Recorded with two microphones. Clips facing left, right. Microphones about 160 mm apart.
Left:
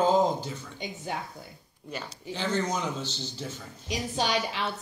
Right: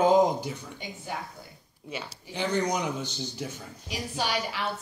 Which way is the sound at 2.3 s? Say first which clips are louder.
Right 2 dB; 15° right (ahead or behind).